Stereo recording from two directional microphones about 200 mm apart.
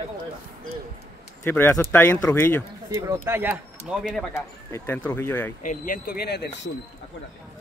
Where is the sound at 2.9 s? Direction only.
15° right (ahead or behind).